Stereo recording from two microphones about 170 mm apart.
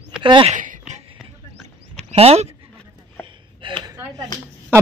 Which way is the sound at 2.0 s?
35° right (ahead or behind).